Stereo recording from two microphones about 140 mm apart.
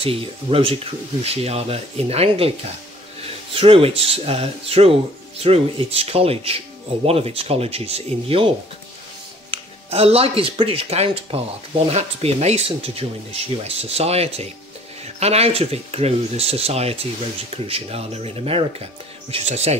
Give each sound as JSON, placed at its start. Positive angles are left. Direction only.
{"t": 0.0, "sound": "speech", "side_deg": -40}
{"t": 9.5, "sound": "speech", "side_deg": -45}